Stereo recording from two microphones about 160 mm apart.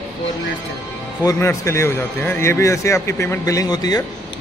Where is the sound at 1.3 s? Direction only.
15° left (ahead or behind).